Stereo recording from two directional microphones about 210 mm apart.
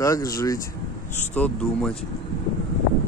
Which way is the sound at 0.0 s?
15° left (ahead or behind).